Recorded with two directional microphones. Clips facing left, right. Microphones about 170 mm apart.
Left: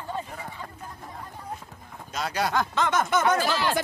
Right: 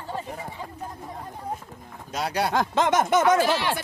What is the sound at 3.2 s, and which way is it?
Speech, 75° right (ahead or behind).